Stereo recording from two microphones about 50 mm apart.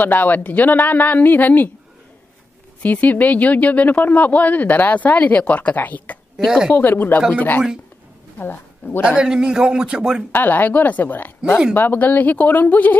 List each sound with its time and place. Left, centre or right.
0.0 s a woman's voice: left
2.8 s a woman's voice: left
6.3 s a woman's voice: centre
6.7 s a woman's voice: left
9.0 s speech: centre
10.3 s a woman's voice: left